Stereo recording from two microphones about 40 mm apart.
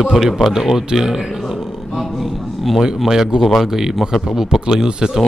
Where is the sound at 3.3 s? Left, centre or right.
Centre.